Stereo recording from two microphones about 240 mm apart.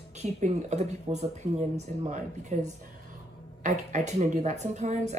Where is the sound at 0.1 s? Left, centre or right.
Right.